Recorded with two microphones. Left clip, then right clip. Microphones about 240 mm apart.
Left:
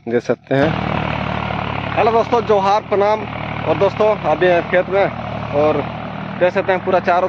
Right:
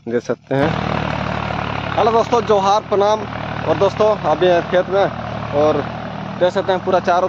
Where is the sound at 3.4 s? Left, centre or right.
Right.